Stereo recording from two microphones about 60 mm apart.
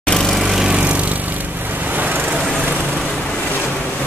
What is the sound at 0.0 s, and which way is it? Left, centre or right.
Lawn mower, centre.